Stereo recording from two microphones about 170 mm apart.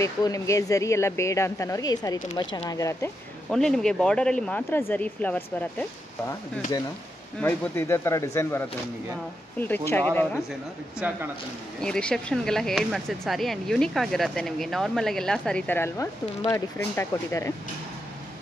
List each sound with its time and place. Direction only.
0.0 s speech: 20° left (ahead or behind)
3.4 s speech: 5° left (ahead or behind)
7.3 s speech: 10° left (ahead or behind)
11.0 s speech: 10° right (ahead or behind)
11.8 s speech: 5° left (ahead or behind)